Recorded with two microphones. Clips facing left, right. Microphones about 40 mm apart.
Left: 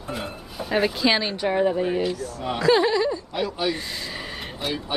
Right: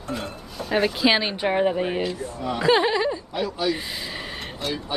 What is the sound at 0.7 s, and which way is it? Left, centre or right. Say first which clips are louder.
Speech: right 1 dB; centre.